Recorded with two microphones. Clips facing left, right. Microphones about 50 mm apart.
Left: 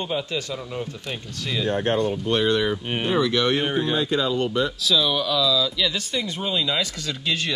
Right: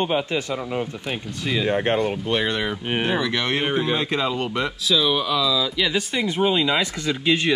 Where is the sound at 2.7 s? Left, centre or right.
Centre.